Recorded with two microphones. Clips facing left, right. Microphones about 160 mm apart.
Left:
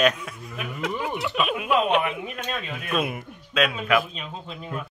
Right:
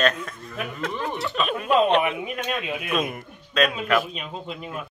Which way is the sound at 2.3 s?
10° right (ahead or behind).